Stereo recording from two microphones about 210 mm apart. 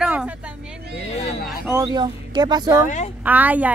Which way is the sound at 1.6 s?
15° right (ahead or behind).